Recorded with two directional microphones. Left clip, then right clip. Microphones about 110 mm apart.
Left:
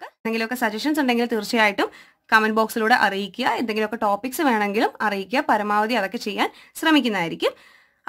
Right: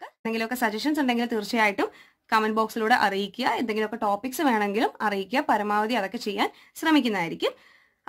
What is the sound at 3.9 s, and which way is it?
Speech, 45° left (ahead or behind).